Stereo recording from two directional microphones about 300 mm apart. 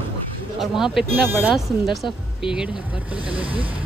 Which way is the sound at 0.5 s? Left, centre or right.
Centre.